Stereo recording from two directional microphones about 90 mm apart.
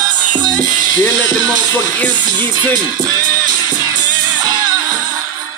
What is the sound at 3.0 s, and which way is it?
Music, 45° right (ahead or behind).